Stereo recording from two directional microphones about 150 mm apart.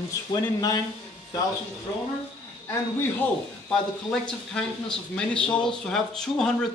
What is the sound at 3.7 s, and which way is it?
A man's voice, 5° left (ahead or behind).